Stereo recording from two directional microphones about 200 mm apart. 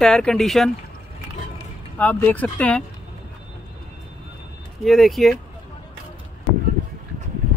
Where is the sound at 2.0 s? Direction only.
10° left (ahead or behind).